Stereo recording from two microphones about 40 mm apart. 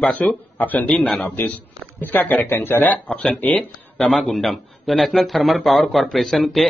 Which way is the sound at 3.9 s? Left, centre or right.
Centre.